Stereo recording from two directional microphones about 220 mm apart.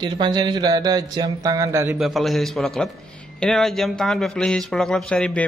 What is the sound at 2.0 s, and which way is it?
Speech, centre (ahead or behind).